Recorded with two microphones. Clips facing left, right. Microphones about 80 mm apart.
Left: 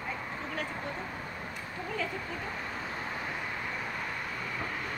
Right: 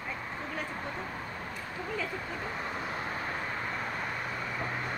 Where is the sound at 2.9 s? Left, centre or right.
Centre.